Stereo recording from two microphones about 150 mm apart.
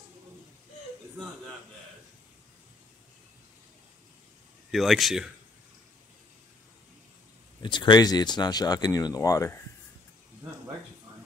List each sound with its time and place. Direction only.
4.6 s speech: centre (ahead or behind)
7.6 s speech: 30° left (ahead or behind)